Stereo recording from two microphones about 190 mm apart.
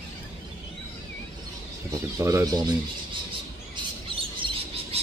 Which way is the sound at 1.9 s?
15° right (ahead or behind).